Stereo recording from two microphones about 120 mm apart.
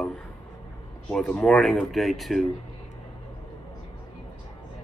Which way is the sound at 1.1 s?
10° left (ahead or behind).